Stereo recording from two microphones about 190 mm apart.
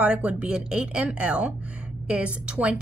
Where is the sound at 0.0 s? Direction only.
5° right (ahead or behind).